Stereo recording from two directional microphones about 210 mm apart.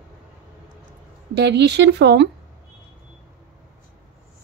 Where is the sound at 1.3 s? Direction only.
50° right (ahead or behind).